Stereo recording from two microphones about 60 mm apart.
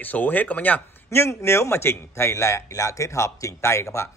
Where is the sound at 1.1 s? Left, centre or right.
Left.